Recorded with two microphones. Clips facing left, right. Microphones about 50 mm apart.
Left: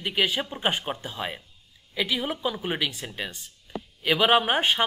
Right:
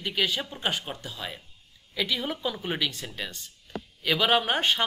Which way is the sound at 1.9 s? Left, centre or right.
Centre.